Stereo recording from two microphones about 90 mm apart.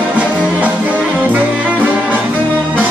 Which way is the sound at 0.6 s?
20° right (ahead or behind).